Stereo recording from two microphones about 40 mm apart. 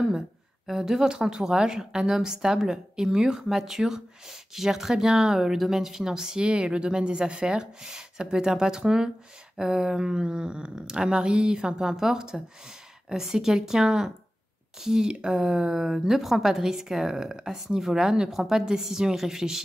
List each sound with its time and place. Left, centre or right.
0.7 s a woman's voice: centre
15.4 s a woman's voice: centre